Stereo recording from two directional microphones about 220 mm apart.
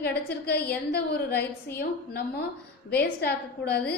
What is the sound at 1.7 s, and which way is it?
Speech, 45° left (ahead or behind).